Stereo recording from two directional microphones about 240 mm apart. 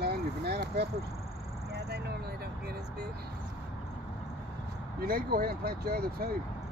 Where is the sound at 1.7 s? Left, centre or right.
Right.